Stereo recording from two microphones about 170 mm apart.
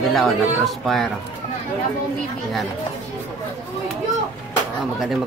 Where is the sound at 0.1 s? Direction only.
Centre (ahead or behind).